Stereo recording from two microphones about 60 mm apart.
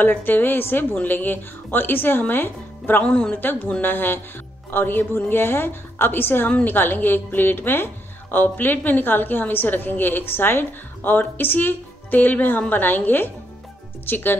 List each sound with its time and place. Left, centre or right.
0.0 s a woman's voice: left